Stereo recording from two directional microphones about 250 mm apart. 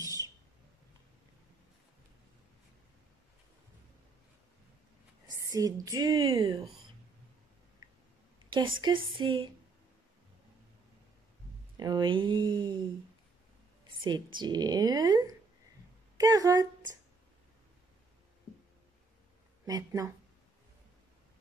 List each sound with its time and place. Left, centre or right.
0.0 s a sound: centre
5.5 s a woman's voice: centre
7.8 s a sound: centre
9.1 s speech: centre
11.7 s speech: centre
14.0 s a woman's voice: centre
19.6 s speech: centre